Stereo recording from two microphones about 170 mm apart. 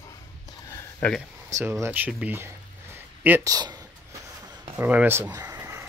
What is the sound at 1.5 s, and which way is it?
Speech, 15° right (ahead or behind).